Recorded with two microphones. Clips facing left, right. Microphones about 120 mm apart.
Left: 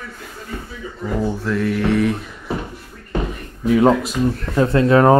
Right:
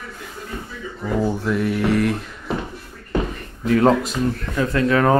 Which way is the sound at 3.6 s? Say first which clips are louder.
Left 2 dB; 5° left (ahead or behind).